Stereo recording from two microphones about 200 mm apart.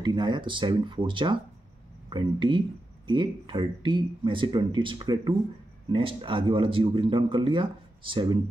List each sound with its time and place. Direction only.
0.0 s speech: 20° right (ahead or behind)